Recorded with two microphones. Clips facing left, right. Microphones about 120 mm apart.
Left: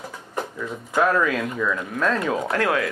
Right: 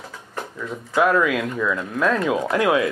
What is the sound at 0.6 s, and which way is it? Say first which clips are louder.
Speech: right 2 dB; centre (ahead or behind).